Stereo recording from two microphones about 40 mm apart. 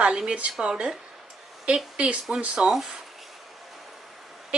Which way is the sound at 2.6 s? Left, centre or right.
Centre.